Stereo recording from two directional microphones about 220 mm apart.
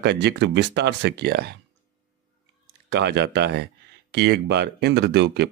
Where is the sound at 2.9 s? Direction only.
50° right (ahead or behind).